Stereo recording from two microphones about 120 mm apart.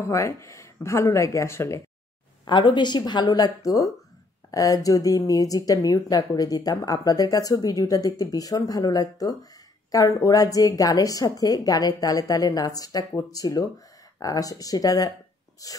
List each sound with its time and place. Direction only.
0.1 s speech: 25° left (ahead or behind)
2.4 s speech: 40° left (ahead or behind)